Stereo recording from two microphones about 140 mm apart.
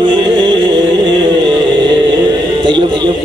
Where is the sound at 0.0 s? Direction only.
35° right (ahead or behind).